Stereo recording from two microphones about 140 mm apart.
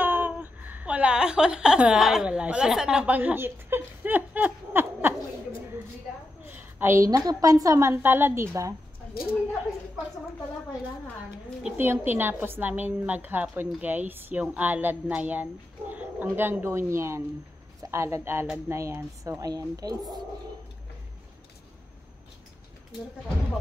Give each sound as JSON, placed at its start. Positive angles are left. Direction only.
{"t": 0.0, "sound": "speech", "side_deg": -15}
{"t": 6.4, "sound": "a woman's voice", "side_deg": -15}
{"t": 11.6, "sound": "a woman's voice", "side_deg": -15}